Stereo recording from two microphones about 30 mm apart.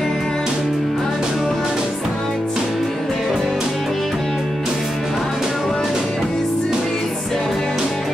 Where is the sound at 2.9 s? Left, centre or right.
Centre.